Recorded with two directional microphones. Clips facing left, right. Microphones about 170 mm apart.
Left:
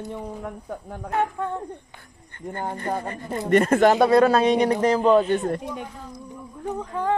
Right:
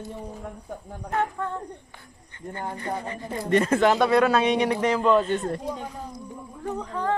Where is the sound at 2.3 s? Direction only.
55° left (ahead or behind).